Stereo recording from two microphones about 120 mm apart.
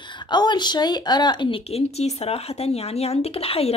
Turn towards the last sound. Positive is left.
turn(degrees=55)  # may be behind; listen again after turning